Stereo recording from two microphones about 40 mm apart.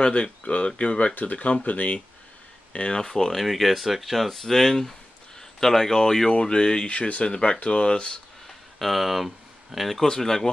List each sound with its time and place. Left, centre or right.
0.0 s speech: left
2.9 s speech: centre
3.3 s speech: centre; by 8.2 s left
8.7 s speech: centre
10.0 s speech: centre